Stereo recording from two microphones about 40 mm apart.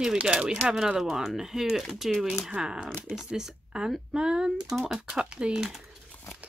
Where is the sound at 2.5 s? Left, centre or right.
Right.